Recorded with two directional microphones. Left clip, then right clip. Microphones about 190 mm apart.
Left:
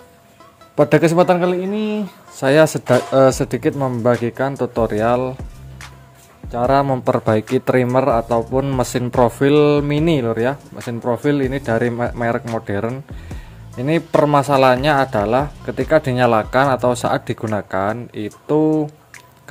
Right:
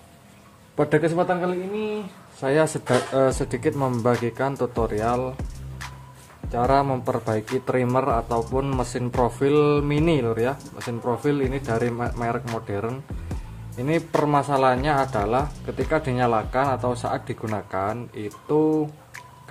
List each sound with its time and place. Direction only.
0.7 s a man's voice: 30° left (ahead or behind); by 1.9 s 50° left (ahead or behind)
2.4 s speech: 30° left (ahead or behind)
6.5 s speech: 25° left (ahead or behind)
8.5 s speech: 20° left (ahead or behind)
8.7 s speech: 35° left (ahead or behind)